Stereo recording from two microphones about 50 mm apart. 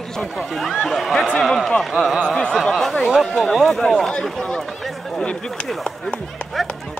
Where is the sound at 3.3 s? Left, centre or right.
Centre.